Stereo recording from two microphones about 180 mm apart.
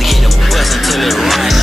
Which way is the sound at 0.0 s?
Centre (ahead or behind).